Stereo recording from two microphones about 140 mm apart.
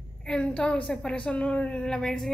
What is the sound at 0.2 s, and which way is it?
A woman's voice, 5° left (ahead or behind).